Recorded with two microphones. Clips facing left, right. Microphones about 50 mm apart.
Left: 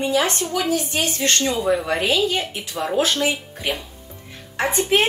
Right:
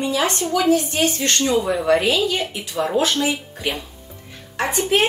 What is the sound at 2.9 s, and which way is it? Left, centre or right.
Speech, left.